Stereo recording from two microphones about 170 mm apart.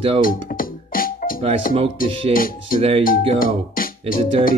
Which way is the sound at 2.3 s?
55° left (ahead or behind).